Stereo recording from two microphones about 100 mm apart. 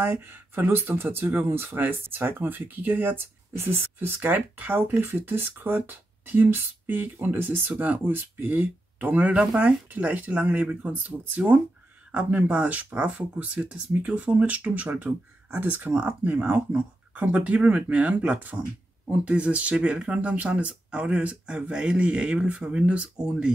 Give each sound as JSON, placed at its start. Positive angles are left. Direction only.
{"t": 0.0, "sound": "speech", "side_deg": -20}